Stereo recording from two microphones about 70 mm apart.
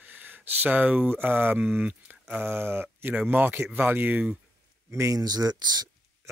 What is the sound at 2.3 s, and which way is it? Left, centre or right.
Speech, right.